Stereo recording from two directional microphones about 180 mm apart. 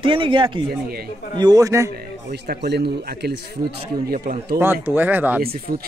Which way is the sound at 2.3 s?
65° right (ahead or behind).